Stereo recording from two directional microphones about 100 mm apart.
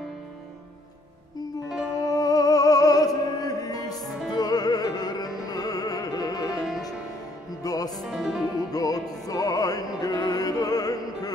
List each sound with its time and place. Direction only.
2.0 s music: 40° left (ahead or behind)
7.6 s music: 40° left (ahead or behind)
8.0 s music: centre (ahead or behind)
8.7 s music: 40° left (ahead or behind)